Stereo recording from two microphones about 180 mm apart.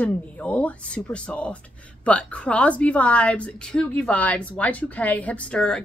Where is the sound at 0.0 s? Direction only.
5° left (ahead or behind).